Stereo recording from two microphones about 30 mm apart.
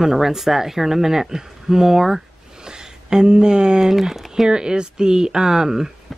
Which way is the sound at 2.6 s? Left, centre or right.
Right.